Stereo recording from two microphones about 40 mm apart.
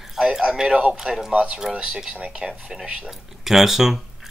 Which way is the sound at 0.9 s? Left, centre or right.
Centre.